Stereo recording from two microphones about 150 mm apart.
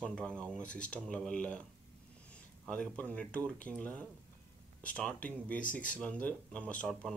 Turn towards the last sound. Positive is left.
turn(degrees=5)  # may be behind; listen again after turning